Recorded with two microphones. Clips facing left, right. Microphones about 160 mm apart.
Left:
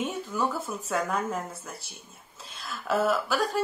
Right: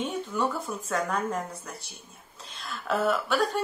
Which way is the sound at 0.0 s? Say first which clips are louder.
Right 1 dB; 5° left (ahead or behind).